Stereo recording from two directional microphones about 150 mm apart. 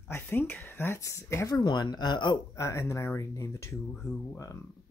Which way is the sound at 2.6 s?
20° left (ahead or behind).